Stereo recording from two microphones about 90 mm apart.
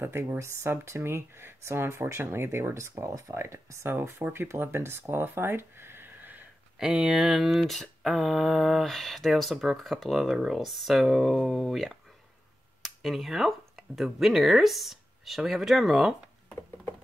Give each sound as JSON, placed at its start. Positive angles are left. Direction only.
{"t": 0.0, "sound": "speech", "side_deg": -25}
{"t": 6.8, "sound": "speech", "side_deg": -5}